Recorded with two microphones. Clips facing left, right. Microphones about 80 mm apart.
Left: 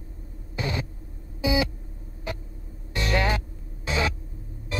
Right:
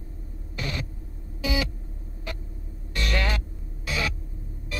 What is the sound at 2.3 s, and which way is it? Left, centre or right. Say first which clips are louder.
Vehicle: left 4 dB; centre.